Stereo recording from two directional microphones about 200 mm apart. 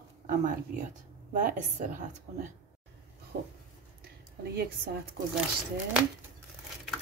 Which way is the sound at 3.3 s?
50° right (ahead or behind).